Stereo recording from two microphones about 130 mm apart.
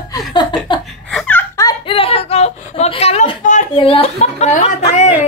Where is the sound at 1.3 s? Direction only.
15° left (ahead or behind).